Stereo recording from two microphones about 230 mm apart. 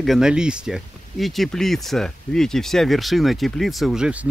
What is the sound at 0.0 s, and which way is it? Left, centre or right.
Speech, centre.